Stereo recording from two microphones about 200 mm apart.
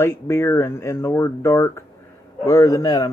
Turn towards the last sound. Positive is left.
turn(degrees=15)  # may be behind; listen again after turning